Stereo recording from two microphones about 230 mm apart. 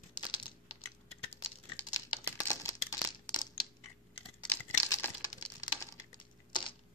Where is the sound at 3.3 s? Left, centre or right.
Centre.